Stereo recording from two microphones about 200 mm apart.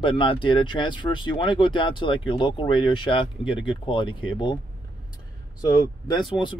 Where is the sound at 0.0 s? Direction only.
25° left (ahead or behind).